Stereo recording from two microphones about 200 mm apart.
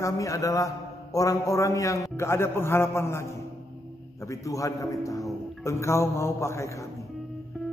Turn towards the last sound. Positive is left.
turn(degrees=15)  # may be behind; listen again after turning